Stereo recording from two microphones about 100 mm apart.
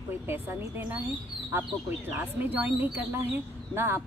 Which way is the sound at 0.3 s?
15° right (ahead or behind).